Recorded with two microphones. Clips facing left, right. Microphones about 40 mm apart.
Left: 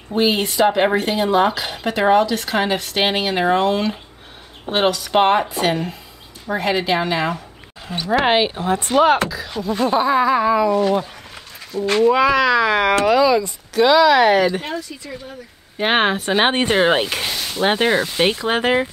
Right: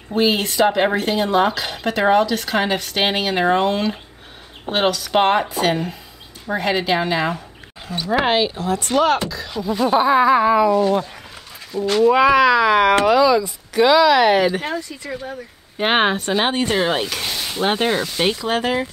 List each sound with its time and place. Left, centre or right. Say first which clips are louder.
0.1 s speech: even; centre
8.3 s speech: left 2 dB; left
8.9 s speech: left 3 dB; centre
9.8 s speech: right 2 dB; centre
11.8 s speech: even; left
12.1 s speech: right 3 dB; centre
15.8 s speech: even; centre
16.3 s speech: left 2 dB; left
17.3 s speech: even; centre
18.3 s speech: left 2 dB; left